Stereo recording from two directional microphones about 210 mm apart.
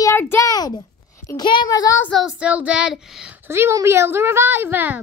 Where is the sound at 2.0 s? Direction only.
Centre (ahead or behind).